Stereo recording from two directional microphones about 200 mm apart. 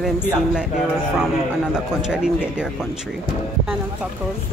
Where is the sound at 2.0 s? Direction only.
5° right (ahead or behind).